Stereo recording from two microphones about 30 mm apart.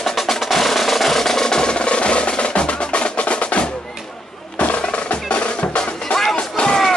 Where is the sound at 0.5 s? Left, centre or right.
Centre; by 4.8 s left.